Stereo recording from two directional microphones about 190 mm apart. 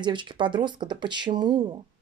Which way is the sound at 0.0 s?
25° right (ahead or behind).